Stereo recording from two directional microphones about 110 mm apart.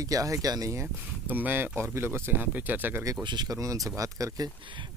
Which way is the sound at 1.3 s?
15° right (ahead or behind).